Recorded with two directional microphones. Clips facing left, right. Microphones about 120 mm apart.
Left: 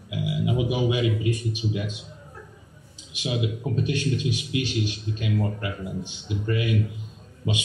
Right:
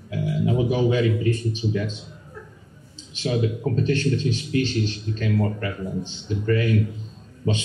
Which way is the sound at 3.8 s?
15° left (ahead or behind).